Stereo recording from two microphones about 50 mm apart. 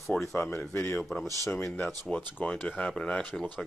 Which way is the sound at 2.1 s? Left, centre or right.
Left.